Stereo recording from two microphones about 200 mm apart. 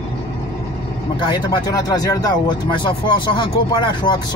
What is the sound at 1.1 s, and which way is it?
Speech, 20° left (ahead or behind).